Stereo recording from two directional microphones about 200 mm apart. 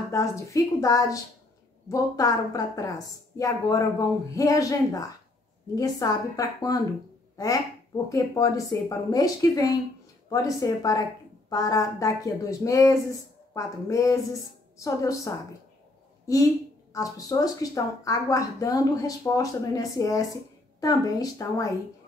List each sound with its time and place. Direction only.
0.1 s speech: 15° left (ahead or behind)
8.1 s speech: 15° left (ahead or behind)